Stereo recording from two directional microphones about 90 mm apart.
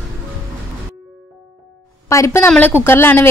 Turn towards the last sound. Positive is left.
turn(degrees=25)  # may be behind; listen again after turning